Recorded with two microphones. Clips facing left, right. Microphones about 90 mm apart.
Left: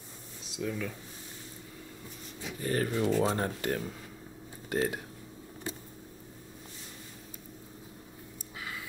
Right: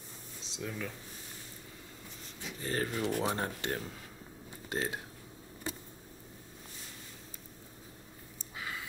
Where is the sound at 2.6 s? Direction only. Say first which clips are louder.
Left 4 dB; 25° right (ahead or behind).